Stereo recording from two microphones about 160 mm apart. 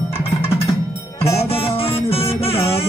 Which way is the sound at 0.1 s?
35° left (ahead or behind).